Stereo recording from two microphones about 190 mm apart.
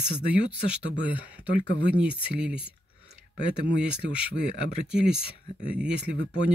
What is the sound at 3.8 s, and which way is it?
Speech, 5° right (ahead or behind).